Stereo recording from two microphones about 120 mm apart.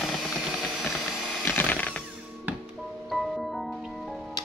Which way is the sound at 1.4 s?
15° left (ahead or behind).